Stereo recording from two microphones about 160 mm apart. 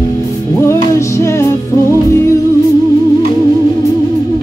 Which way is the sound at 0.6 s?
20° left (ahead or behind).